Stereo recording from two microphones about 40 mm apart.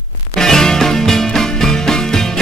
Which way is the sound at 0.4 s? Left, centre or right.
Centre.